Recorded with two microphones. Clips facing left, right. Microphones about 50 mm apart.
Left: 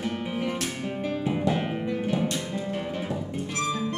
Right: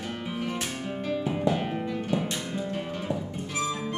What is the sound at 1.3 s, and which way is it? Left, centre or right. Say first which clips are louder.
Music: left 1 dB; centre.